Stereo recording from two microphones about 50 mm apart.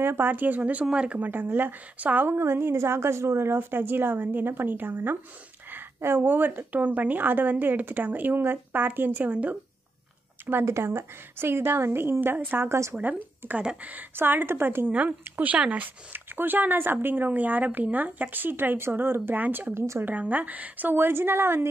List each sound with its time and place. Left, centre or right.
0.0 s speech: right
0.3 s speech: right
1.2 s speech: right
2.2 s a woman's voice: right
5.9 s a woman's voice: right
6.2 s speech: right
9.3 s speech: right
10.6 s a woman's voice: right
12.6 s a woman's voice: right
14.1 s a woman's voice: right
14.9 s speech: right
19.3 s speech: right
19.7 s speech: right
20.1 s speech: right